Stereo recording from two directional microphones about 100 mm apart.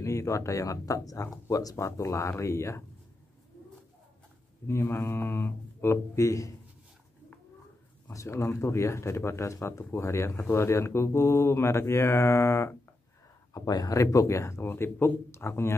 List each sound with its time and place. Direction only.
0.0 s speech: 30° left (ahead or behind)
4.6 s speech: 25° left (ahead or behind)
8.1 s speech: 30° left (ahead or behind)
13.5 s speech: 40° left (ahead or behind)